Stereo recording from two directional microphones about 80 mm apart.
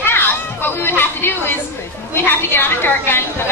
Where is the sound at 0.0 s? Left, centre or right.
Left.